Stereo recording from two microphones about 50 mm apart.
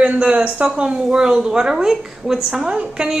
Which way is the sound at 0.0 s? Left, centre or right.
Right.